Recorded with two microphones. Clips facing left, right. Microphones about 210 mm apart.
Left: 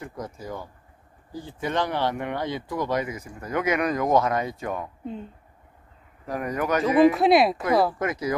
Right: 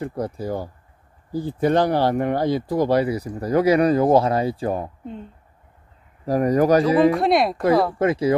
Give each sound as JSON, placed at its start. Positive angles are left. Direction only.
{"t": 0.0, "sound": "speech", "side_deg": -35}
{"t": 6.2, "sound": "speech", "side_deg": -35}
{"t": 7.1, "sound": "speech", "side_deg": 0}
{"t": 8.0, "sound": "speech", "side_deg": -30}